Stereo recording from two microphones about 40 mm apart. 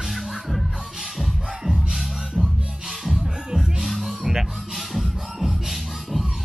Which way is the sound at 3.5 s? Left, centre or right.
Centre.